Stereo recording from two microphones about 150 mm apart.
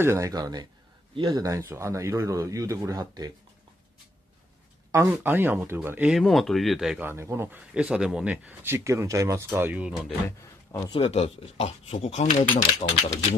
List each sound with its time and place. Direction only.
0.0 s speech: 20° right (ahead or behind)
1.7 s speech: 20° right (ahead or behind)
4.9 s speech: 15° right (ahead or behind); by 7.0 s centre (ahead or behind)
7.0 s speech: 15° right (ahead or behind)
10.2 s a man's voice: 20° left (ahead or behind)
10.9 s speech: 40° left (ahead or behind)